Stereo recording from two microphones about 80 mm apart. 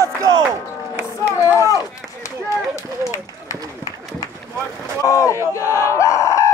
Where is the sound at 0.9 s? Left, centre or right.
Right.